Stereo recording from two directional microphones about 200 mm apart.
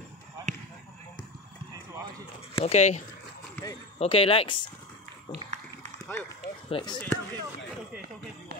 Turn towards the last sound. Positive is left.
turn(degrees=25)  # may be behind; listen again after turning